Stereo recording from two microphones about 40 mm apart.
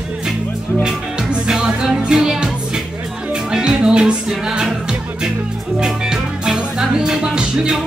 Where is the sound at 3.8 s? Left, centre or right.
Right.